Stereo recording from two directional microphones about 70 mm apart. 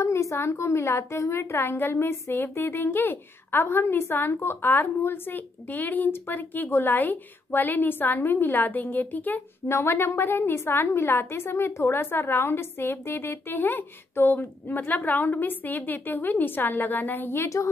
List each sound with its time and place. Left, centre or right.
0.0 s a sound: left
0.7 s a woman's voice: left
9.7 s a woman's voice: left